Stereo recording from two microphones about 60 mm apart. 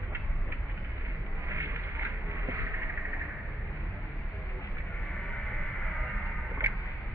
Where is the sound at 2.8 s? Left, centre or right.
Right.